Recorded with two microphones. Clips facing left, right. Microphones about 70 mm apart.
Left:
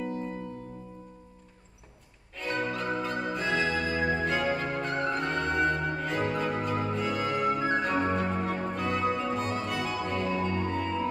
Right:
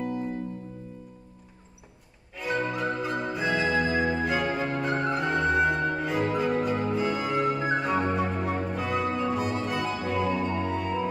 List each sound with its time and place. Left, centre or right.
2.3 s music: centre
10.3 s music: centre